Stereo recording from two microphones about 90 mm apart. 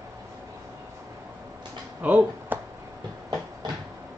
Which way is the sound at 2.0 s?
20° right (ahead or behind).